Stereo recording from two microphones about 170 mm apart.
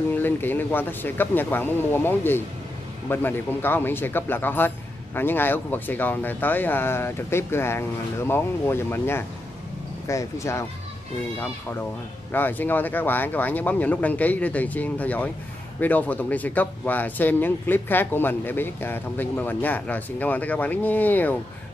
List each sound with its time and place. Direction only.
0.1 s a man's voice: 10° left (ahead or behind)
12.3 s a man's voice: 10° left (ahead or behind)